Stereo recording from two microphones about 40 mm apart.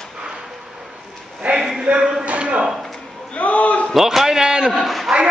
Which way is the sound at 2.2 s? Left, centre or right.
Right.